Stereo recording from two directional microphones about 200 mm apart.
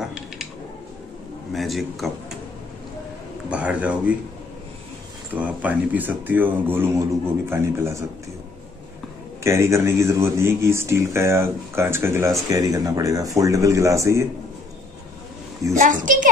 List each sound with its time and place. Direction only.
1.5 s speech: centre (ahead or behind)
3.4 s speech: 5° right (ahead or behind)
5.3 s speech: 10° right (ahead or behind)
9.4 s speech: 15° right (ahead or behind)
15.7 s a woman's voice: 40° right (ahead or behind)